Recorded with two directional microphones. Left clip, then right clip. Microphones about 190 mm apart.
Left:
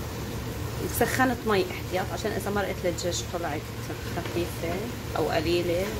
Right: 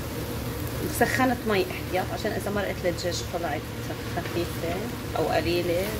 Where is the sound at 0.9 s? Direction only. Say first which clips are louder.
Right 1 dB; 15° left (ahead or behind).